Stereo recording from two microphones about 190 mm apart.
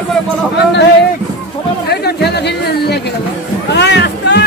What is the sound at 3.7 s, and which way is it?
Cat, 65° left (ahead or behind).